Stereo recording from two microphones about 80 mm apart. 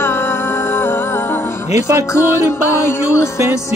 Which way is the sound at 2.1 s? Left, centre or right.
Left.